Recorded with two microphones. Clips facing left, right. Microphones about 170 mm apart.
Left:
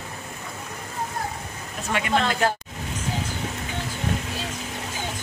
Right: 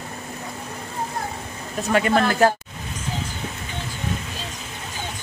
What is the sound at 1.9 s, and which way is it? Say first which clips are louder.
Speech: right 7 dB; 40° right (ahead or behind).